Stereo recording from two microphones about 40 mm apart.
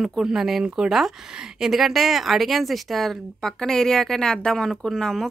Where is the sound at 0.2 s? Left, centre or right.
Centre.